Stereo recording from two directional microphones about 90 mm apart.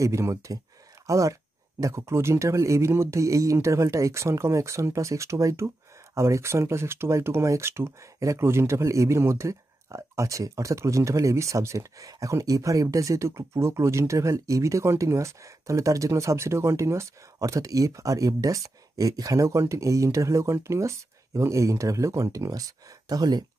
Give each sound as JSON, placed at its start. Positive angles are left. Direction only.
{"t": 0.0, "sound": "speech", "side_deg": -35}